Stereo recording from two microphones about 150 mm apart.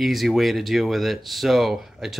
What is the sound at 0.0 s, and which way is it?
Speech, centre (ahead or behind).